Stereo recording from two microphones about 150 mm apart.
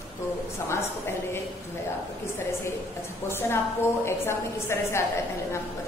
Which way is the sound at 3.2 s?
15° left (ahead or behind).